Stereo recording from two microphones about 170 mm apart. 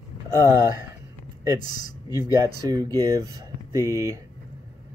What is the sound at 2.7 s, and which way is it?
Speech, 20° right (ahead or behind).